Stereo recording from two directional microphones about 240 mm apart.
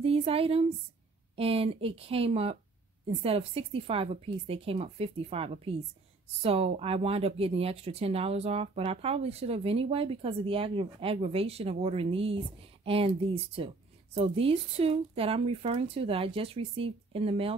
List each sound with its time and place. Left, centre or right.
0.0 s speech: right